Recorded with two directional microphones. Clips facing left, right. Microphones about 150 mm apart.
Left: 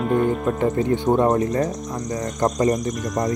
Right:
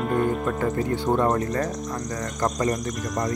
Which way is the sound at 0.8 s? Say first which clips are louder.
Left 4 dB; 20° left (ahead or behind).